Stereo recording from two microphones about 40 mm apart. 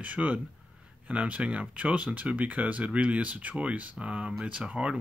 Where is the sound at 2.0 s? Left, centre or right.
Right.